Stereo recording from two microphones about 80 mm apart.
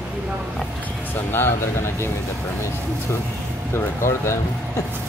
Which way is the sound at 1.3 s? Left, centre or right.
Left.